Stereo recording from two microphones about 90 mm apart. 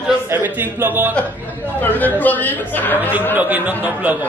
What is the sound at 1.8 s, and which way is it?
A woman's voice, 20° left (ahead or behind).